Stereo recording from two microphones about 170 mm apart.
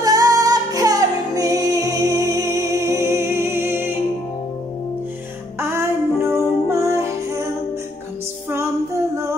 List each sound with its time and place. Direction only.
0.0 s music: 20° right (ahead or behind)
5.6 s music: 15° right (ahead or behind)
8.5 s female singing: 15° right (ahead or behind)